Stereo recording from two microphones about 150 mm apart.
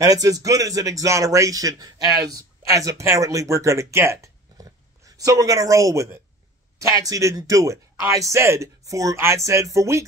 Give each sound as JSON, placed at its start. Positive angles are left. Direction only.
{"t": 0.0, "sound": "speech", "side_deg": -25}